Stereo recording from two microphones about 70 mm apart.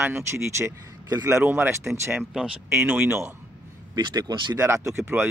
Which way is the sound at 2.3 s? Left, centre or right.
Centre.